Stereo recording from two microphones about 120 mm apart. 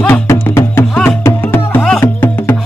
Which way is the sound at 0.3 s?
20° left (ahead or behind).